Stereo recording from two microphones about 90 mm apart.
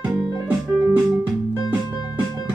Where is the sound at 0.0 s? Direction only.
15° right (ahead or behind).